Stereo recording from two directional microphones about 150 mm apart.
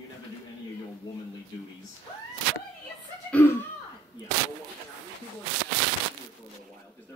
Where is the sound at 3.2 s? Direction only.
10° left (ahead or behind).